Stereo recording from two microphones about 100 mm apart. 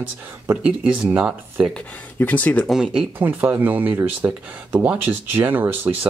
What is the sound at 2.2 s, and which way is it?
Speech, 15° left (ahead or behind).